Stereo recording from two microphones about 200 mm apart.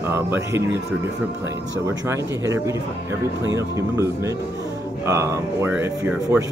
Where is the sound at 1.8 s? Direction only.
15° right (ahead or behind).